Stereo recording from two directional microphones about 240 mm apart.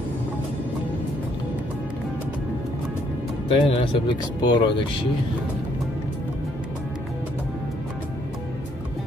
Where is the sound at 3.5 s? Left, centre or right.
Left.